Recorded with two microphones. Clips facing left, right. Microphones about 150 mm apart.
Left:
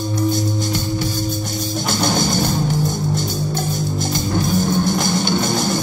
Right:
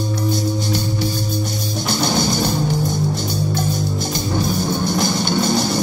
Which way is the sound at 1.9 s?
50° left (ahead or behind).